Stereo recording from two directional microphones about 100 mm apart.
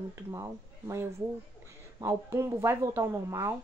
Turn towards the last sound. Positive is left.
turn(degrees=-30)  # may be behind; listen again after turning